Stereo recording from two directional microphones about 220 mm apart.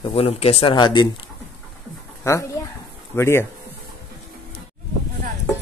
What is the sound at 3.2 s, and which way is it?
Speech, 10° left (ahead or behind).